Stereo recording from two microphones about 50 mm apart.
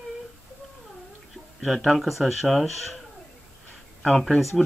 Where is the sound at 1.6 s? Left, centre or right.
Centre.